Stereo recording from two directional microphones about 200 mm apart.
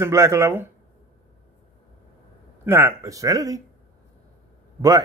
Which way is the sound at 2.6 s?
10° right (ahead or behind).